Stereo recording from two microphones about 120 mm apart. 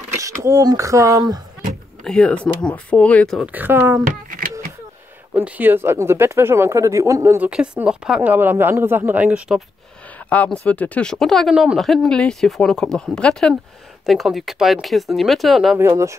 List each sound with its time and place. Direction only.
0.1 s speech: 25° right (ahead or behind)
2.0 s speech: 10° left (ahead or behind)
3.5 s speech: 20° right (ahead or behind)
5.3 s speech: 15° right (ahead or behind)
7.3 s speech: 10° right (ahead or behind)
10.3 s speech: 10° left (ahead or behind)